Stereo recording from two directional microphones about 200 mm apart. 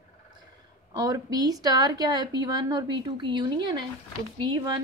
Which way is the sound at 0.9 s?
20° right (ahead or behind).